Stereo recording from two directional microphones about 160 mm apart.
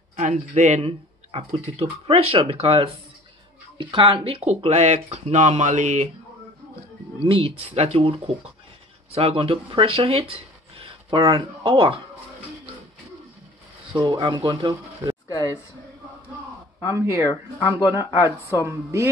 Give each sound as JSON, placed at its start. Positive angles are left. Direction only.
{"t": 0.1, "sound": "speech", "side_deg": -45}
{"t": 7.2, "sound": "speech", "side_deg": -35}
{"t": 13.9, "sound": "speech", "side_deg": -25}
{"t": 15.2, "sound": "a sound", "side_deg": 20}
{"t": 16.9, "sound": "speech", "side_deg": -20}